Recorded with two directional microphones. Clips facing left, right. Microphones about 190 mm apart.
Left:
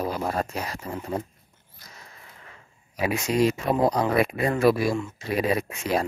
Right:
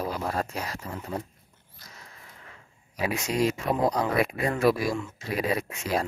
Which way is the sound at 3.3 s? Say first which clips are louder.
Left 4 dB; 30° left (ahead or behind).